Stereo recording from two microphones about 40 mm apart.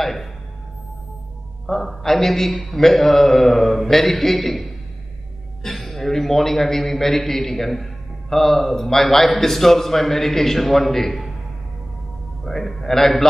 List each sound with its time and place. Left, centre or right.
0.0 s a man's voice: centre
1.7 s a man's voice: centre
12.4 s a man's voice: centre